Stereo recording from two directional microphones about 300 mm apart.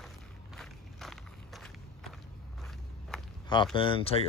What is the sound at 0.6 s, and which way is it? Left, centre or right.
Walk, centre.